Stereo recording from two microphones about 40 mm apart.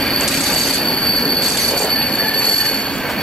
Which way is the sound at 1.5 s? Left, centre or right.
Centre.